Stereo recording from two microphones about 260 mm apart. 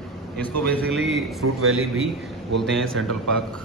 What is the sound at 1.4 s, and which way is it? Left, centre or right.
Speech, right.